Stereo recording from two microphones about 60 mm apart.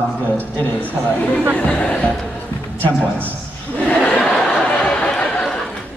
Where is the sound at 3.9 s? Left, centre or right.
Centre.